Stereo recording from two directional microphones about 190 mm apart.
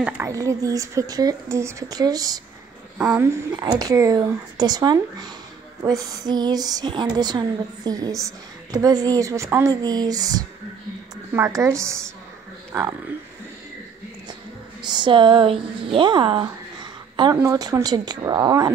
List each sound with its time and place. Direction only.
0.0 s speech: 15° right (ahead or behind)
14.8 s speech: 25° right (ahead or behind)